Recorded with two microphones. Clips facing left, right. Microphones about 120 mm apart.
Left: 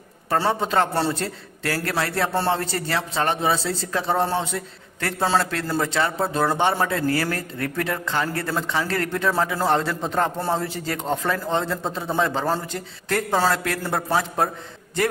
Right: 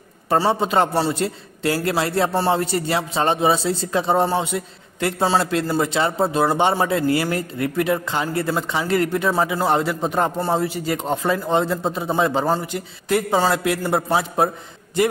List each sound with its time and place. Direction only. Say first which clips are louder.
0.5 s a man's voice: right 1 dB; 20° right (ahead or behind)